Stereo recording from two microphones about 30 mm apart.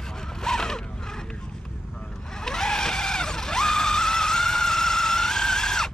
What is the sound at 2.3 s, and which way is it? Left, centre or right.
Vehicle, centre.